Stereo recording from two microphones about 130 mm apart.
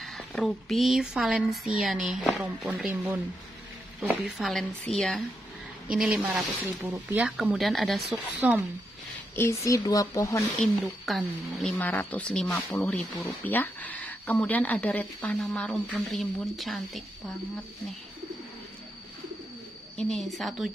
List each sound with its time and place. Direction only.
0.0 s speech: centre (ahead or behind)
4.4 s speech: centre (ahead or behind)
5.9 s speech: 10° right (ahead or behind)
8.1 s speech: 10° right (ahead or behind)
9.3 s speech: 20° left (ahead or behind)
10.6 s speech: centre (ahead or behind)
11.8 s speech: 15° left (ahead or behind)
20.0 s speech: 5° left (ahead or behind)